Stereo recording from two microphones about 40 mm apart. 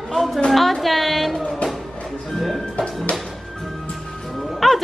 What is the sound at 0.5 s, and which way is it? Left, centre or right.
Speech, centre.